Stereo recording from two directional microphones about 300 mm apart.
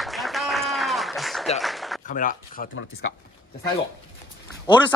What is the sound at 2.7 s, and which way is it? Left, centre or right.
Speech, left.